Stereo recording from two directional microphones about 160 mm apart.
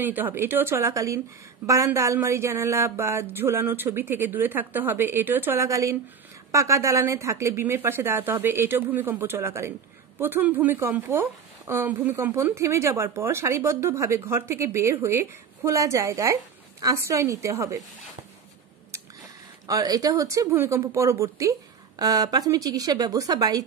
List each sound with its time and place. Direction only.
0.0 s a woman's voice: 10° right (ahead or behind)
19.6 s speech: 20° right (ahead or behind)